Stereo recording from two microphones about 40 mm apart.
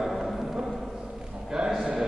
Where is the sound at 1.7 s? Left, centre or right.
Centre.